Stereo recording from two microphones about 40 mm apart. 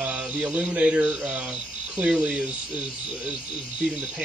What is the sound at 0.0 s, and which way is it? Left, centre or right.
Music, right.